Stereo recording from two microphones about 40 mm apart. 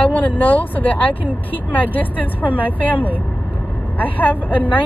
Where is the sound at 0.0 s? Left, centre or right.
Left.